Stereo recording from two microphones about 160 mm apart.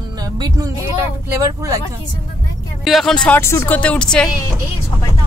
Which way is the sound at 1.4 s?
20° right (ahead or behind).